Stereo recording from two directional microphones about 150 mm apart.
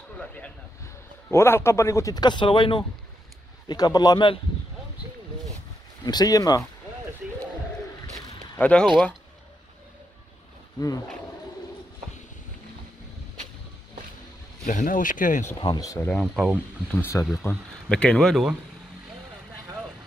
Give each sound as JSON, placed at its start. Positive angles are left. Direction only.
{"t": 0.2, "sound": "a sound", "side_deg": 10}
{"t": 1.3, "sound": "a man's voice", "side_deg": 15}
{"t": 6.0, "sound": "a man's voice", "side_deg": 25}
{"t": 8.5, "sound": "speech", "side_deg": 10}
{"t": 14.7, "sound": "speech", "side_deg": 60}
{"t": 15.6, "sound": "a man's voice", "side_deg": 25}
{"t": 16.1, "sound": "speech", "side_deg": 0}
{"t": 17.0, "sound": "a man's voice", "side_deg": 20}
{"t": 17.5, "sound": "speech", "side_deg": 5}